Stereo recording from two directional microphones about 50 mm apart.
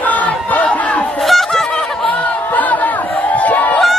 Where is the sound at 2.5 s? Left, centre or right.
Left.